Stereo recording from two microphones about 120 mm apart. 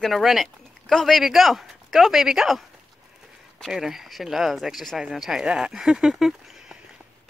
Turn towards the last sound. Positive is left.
turn(degrees=-5)  # may be behind; listen again after turning